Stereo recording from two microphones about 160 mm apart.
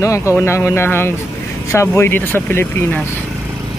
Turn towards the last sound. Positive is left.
turn(degrees=15)  # may be behind; listen again after turning